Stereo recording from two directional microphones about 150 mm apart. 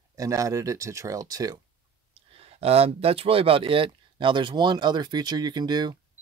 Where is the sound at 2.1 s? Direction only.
40° right (ahead or behind).